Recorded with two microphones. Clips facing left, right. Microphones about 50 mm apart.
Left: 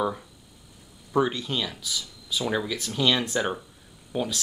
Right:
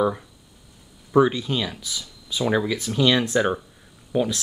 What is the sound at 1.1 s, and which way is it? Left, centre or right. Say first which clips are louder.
Speech: right 6 dB; centre.